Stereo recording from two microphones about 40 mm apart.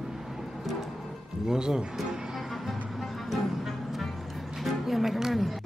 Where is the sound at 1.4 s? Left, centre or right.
Centre.